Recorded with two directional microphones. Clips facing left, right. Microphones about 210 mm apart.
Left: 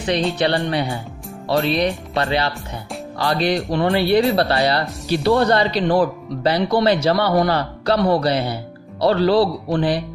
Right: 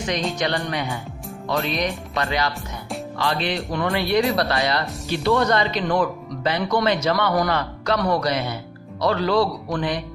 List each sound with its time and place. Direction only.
0.4 s speech: 35° left (ahead or behind)